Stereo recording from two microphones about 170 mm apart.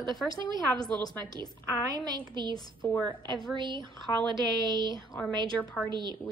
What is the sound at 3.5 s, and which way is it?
A woman's voice, 25° right (ahead or behind).